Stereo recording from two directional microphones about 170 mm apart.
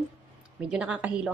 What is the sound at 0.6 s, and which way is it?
Speech, 5° right (ahead or behind).